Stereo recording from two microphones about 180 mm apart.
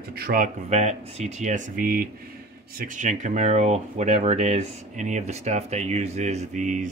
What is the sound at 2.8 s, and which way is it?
Speech, 45° right (ahead or behind).